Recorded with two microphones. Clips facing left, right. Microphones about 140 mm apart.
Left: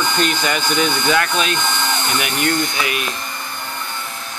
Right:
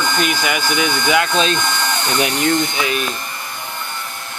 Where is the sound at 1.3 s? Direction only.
30° right (ahead or behind).